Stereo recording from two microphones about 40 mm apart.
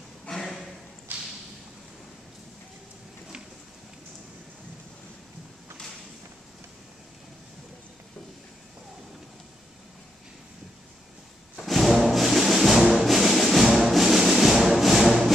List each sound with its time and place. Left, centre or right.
0.2 s a sound: centre
1.1 s whip: right
11.6 s music: centre